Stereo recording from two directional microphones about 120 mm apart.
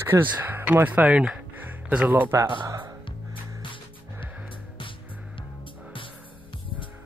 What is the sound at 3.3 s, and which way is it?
Music, 45° left (ahead or behind).